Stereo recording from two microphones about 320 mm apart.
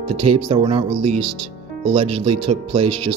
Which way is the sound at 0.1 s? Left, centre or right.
Centre.